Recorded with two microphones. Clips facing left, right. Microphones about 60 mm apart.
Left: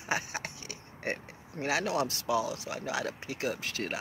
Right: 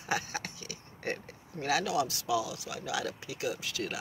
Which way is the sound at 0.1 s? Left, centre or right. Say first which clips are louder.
Even; left.